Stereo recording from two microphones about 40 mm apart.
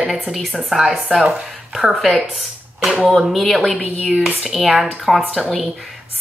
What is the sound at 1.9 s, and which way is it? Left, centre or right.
Speech, centre.